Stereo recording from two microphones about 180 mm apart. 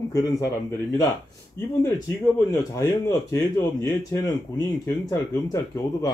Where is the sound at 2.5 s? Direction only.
20° left (ahead or behind).